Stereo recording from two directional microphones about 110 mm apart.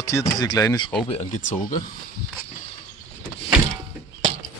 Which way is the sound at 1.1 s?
75° left (ahead or behind).